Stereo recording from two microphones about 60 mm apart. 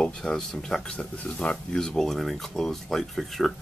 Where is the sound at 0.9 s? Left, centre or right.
Left.